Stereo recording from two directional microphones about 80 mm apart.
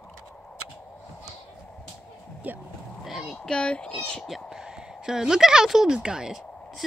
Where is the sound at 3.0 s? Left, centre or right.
Centre.